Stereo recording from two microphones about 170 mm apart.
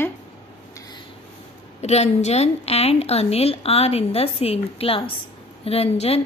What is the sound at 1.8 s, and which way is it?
A woman's voice, 40° left (ahead or behind).